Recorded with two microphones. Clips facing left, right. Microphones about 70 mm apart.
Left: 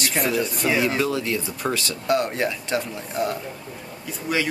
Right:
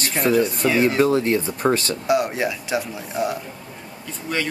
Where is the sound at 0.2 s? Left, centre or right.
Centre.